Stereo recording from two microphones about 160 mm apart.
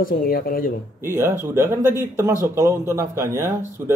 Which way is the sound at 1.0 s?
15° right (ahead or behind).